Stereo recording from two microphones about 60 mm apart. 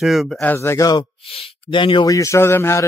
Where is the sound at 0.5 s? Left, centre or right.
Left.